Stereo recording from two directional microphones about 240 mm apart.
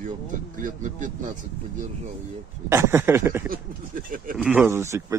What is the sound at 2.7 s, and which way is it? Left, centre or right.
Speech, centre.